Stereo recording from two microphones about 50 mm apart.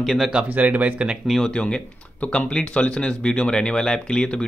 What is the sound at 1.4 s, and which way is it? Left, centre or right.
Speech, centre.